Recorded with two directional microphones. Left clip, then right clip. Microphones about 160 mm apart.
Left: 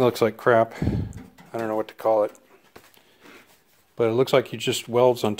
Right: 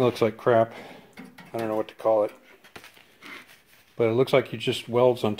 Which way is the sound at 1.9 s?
15° left (ahead or behind).